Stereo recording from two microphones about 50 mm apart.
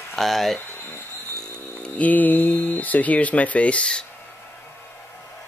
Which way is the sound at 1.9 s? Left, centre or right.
Left.